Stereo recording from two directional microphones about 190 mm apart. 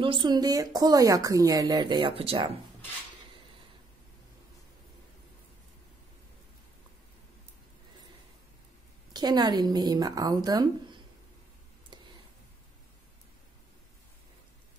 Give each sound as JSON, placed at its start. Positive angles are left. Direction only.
{"t": 0.0, "sound": "speech", "side_deg": -25}
{"t": 9.1, "sound": "speech", "side_deg": -20}